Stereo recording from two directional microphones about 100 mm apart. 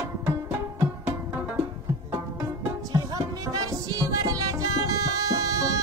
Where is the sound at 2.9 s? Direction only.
40° right (ahead or behind).